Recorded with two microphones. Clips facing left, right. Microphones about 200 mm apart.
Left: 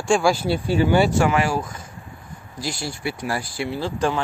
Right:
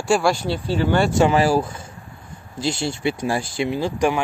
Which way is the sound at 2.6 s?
25° right (ahead or behind).